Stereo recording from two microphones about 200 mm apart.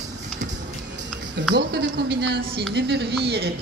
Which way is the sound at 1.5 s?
55° right (ahead or behind).